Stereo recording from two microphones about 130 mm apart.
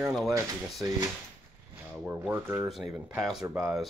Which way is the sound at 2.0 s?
15° right (ahead or behind).